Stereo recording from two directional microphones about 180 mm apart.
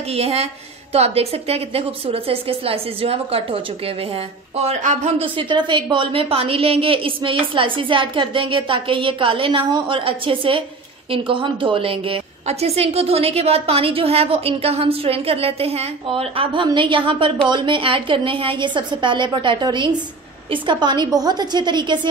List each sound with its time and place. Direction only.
0.1 s a woman's voice: 35° right (ahead or behind)